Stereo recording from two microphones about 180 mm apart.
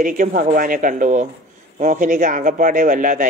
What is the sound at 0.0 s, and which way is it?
A man's voice, 50° right (ahead or behind).